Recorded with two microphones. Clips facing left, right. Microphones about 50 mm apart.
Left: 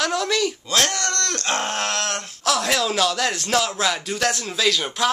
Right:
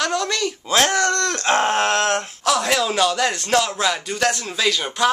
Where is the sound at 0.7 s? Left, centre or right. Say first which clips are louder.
Right 5 dB; right.